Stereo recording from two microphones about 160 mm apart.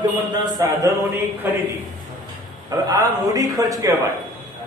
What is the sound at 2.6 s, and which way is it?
Speech, 25° right (ahead or behind).